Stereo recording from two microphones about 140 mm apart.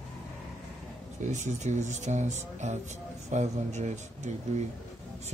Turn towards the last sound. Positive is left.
turn(degrees=-55)  # may be behind; listen again after turning